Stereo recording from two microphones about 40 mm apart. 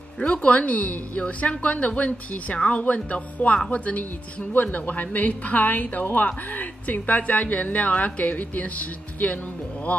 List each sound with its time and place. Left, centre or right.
0.2 s a woman's voice: left